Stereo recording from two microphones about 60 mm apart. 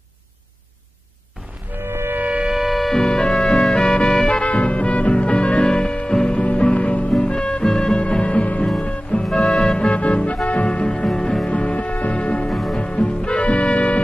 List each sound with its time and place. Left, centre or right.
1.8 s music: right
2.1 s a sound: right
2.5 s music: centre
3.0 s music: centre
12.4 s music: centre
12.7 s music: centre